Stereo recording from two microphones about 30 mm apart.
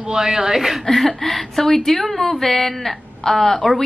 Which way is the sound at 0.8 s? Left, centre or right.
Centre.